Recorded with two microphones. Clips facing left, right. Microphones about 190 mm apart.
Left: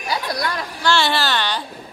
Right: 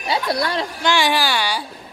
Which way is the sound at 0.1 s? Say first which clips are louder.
Right 3 dB; 25° right (ahead or behind).